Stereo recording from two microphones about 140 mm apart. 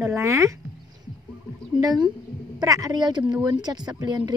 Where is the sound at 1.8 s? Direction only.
30° right (ahead or behind).